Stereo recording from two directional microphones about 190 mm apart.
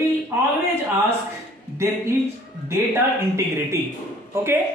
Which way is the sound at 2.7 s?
15° right (ahead or behind).